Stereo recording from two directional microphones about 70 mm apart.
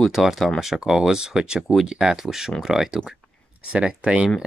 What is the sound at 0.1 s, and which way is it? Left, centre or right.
Speech, centre.